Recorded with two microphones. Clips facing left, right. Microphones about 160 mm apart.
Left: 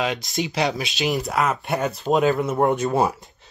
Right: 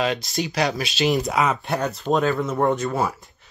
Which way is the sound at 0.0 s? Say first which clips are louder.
Right 1 dB; 15° left (ahead or behind).